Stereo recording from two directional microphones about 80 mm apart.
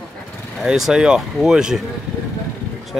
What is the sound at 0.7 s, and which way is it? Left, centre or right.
Speech, centre.